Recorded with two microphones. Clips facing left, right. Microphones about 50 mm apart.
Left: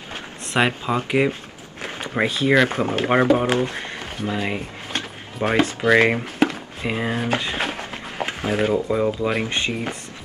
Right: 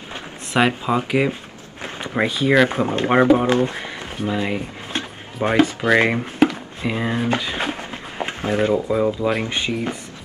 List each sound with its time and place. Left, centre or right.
0.6 s speech: centre
1.8 s a sound: centre
2.4 s speech: centre
3.6 s music: centre
5.8 s speech: centre
6.9 s a sound: centre
8.7 s speech: centre